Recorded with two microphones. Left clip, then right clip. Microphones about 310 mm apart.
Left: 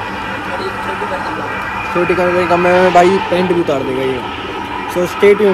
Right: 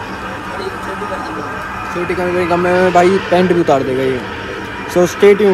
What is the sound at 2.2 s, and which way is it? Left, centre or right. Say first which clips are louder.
Speech: left 1 dB; centre.